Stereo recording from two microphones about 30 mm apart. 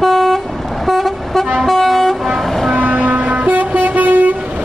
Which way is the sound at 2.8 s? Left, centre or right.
Right.